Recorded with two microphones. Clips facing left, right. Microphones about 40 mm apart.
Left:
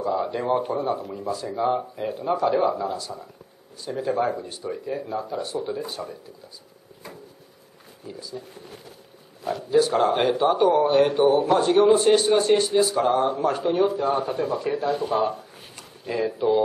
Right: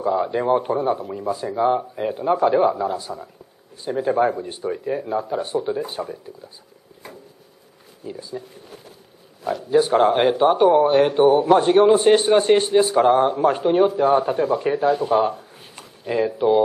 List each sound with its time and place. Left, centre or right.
0.0 s speech: centre
0.6 s speech: right
1.3 s speech: right
2.0 s speech: right
2.7 s speech: right
8.1 s speech: right
9.7 s speech: right
9.9 s speech: right